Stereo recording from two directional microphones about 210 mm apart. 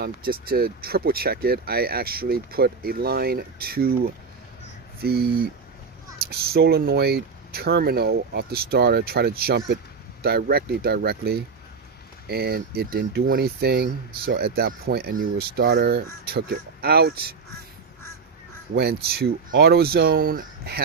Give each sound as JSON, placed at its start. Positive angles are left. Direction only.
{"t": 0.0, "sound": "speech", "side_deg": -45}
{"t": 5.0, "sound": "speech", "side_deg": -50}
{"t": 18.8, "sound": "speech", "side_deg": -50}